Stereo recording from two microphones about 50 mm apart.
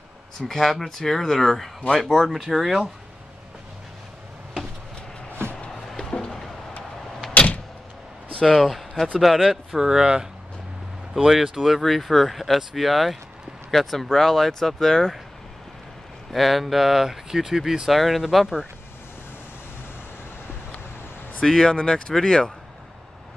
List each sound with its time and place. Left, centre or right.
0.4 s speech: centre
5.4 s music: left
5.7 s a sound: centre
7.3 s vehicle: left
8.3 s a sound: centre
8.5 s speech: centre
11.2 s speech: centre
16.3 s speech: centre
21.4 s speech: centre